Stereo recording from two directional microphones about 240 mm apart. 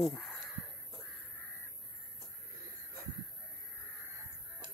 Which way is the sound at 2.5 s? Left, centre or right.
Right.